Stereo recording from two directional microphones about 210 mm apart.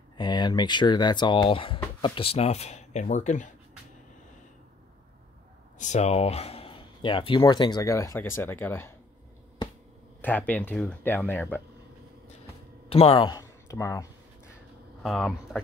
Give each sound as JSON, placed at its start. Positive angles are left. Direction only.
{"t": 0.2, "sound": "speech", "side_deg": 20}
{"t": 5.8, "sound": "speech", "side_deg": 35}
{"t": 10.2, "sound": "speech", "side_deg": 10}
{"t": 12.9, "sound": "speech", "side_deg": 25}
{"t": 15.0, "sound": "speech", "side_deg": 0}